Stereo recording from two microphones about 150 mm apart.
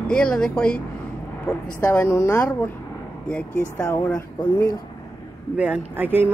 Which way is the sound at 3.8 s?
20° left (ahead or behind).